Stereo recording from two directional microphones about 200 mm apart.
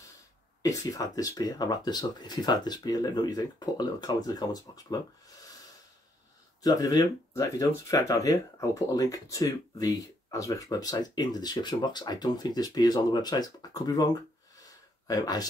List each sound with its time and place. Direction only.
0.6 s speech: 15° left (ahead or behind)
6.6 s speech: 20° left (ahead or behind)
14.6 s a sound: 20° left (ahead or behind)